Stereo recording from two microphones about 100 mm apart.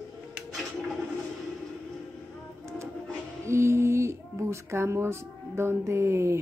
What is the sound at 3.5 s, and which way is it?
A child's voice, 30° right (ahead or behind).